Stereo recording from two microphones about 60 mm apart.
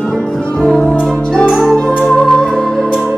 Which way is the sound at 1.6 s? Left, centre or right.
Centre.